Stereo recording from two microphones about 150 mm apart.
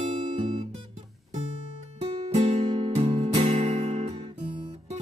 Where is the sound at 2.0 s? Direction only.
40° right (ahead or behind).